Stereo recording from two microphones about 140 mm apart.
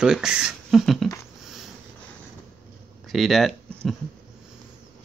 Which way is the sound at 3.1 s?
Centre (ahead or behind).